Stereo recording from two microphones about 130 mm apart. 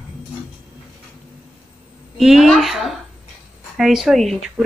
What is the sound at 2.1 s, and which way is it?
Speech, centre (ahead or behind).